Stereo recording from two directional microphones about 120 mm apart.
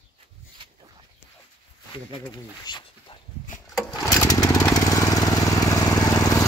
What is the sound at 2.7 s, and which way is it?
Speech, 40° left (ahead or behind).